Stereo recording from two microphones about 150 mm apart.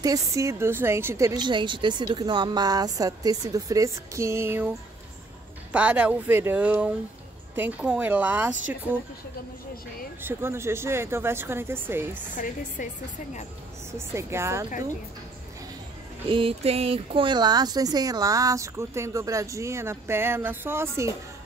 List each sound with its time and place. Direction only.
0.0 s speech: 20° right (ahead or behind)
10.2 s speech: 15° right (ahead or behind)
12.4 s a woman's voice: 55° left (ahead or behind)
13.9 s speech: 15° right (ahead or behind)
16.3 s speech: 35° right (ahead or behind); by 21.1 s 15° right (ahead or behind)